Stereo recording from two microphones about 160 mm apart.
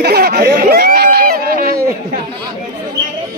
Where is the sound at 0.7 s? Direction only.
80° right.